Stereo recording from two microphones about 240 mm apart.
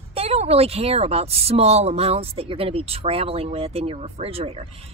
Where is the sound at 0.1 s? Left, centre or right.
Right.